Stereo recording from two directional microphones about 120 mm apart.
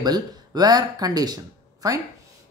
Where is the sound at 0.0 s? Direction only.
35° right (ahead or behind).